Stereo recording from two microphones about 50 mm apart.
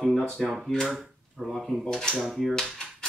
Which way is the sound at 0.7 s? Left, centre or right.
Centre.